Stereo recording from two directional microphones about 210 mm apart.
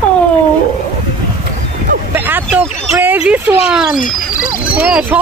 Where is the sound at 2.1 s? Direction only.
10° right (ahead or behind).